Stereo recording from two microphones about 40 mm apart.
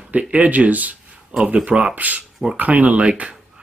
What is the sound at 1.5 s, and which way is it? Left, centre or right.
Speech, right.